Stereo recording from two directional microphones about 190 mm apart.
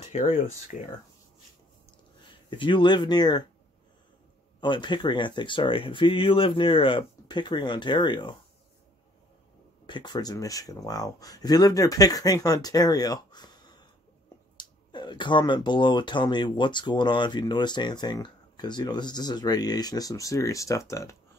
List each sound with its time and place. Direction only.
0.0 s speech: 35° left (ahead or behind)
2.5 s speech: 25° left (ahead or behind)
4.6 s speech: 25° left (ahead or behind)
9.8 s speech: 25° left (ahead or behind)